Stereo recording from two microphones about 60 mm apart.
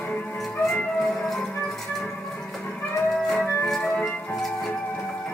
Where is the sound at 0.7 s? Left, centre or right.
Centre.